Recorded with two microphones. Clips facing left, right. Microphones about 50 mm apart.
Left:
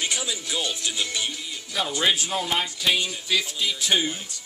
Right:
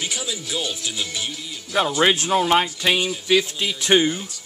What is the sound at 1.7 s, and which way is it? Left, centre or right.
Speech, right.